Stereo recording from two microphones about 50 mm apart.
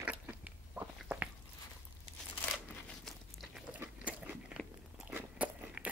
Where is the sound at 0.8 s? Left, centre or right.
Right.